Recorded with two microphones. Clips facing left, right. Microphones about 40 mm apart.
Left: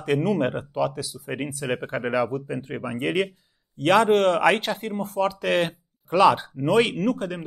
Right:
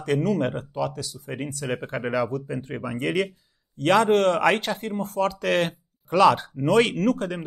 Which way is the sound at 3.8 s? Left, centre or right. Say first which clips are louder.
Left 1 dB; centre.